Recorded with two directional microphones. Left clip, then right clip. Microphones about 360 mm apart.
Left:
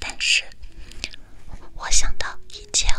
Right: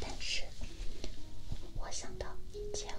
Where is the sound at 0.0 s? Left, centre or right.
Left.